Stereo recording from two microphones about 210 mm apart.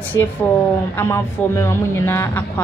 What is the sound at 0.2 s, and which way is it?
A woman's voice, 15° left (ahead or behind).